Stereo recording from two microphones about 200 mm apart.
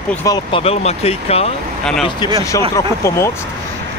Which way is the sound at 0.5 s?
30° left (ahead or behind).